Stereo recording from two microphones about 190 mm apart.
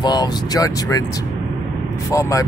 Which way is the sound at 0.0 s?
20° left (ahead or behind).